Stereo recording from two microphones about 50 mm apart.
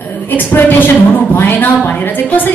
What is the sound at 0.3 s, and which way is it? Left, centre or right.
A woman's voice, left.